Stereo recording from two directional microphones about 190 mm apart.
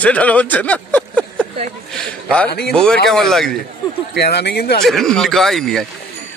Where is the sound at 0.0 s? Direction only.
5° left (ahead or behind).